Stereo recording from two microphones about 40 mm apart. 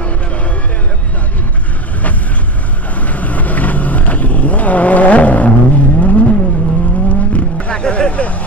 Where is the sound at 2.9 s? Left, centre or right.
Left.